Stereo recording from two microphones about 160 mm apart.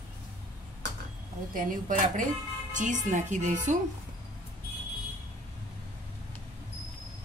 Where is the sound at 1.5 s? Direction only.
55° right (ahead or behind).